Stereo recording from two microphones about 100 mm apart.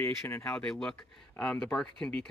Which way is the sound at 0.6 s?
10° left (ahead or behind).